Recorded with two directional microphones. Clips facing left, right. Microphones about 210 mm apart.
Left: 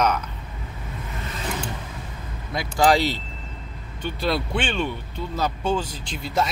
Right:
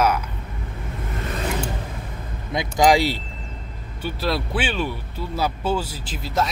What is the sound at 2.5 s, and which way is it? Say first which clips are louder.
Speech: right 2 dB; 15° right (ahead or behind).